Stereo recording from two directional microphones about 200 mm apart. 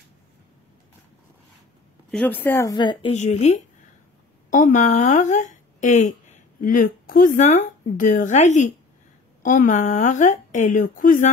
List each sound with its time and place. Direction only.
2.0 s speech: 5° left (ahead or behind); by 3.1 s 20° left (ahead or behind)
3.1 s speech: 35° left (ahead or behind)